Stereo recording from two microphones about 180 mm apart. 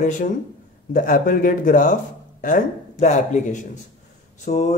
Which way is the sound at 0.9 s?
50° left (ahead or behind).